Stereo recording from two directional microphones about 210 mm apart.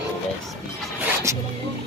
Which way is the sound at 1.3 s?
15° right (ahead or behind).